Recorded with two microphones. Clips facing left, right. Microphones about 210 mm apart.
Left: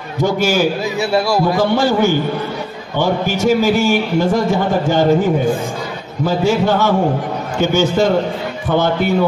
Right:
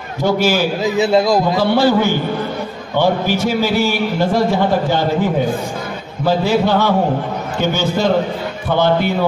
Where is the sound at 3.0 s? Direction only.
45° left (ahead or behind).